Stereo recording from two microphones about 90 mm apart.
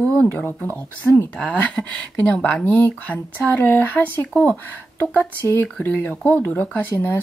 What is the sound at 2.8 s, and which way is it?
Speech, 20° left (ahead or behind).